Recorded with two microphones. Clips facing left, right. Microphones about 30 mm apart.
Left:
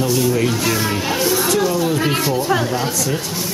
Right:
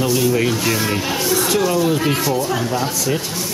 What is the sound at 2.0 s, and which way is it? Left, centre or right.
Speech, centre.